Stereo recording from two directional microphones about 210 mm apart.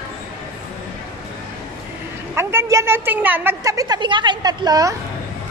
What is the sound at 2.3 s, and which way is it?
A woman's voice, 10° right (ahead or behind).